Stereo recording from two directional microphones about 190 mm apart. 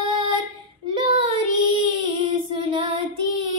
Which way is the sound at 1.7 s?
25° right (ahead or behind).